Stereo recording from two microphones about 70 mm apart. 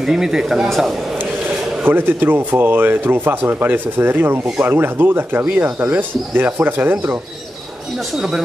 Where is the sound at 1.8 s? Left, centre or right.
Right.